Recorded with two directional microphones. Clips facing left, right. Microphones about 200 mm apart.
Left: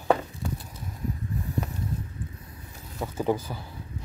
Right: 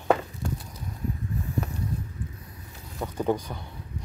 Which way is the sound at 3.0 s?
5° left (ahead or behind).